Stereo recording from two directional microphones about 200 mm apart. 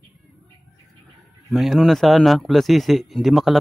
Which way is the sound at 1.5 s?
Centre (ahead or behind).